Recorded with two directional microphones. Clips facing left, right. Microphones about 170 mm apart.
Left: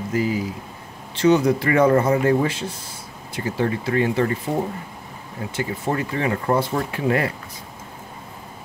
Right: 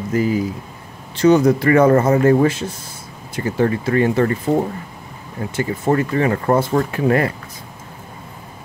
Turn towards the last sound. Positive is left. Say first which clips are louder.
# right 5 dB
turn(degrees=-45)  # may be behind; listen again after turning